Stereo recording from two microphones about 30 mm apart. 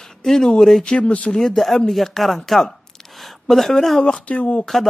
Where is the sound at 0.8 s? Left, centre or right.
Left.